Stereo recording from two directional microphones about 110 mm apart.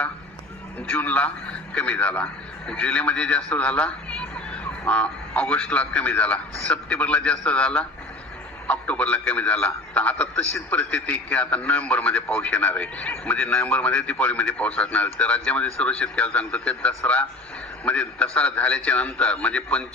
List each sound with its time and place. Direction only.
0.8 s a man's voice: 15° left (ahead or behind)